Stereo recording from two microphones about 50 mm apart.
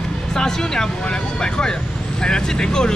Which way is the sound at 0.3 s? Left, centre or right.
Centre.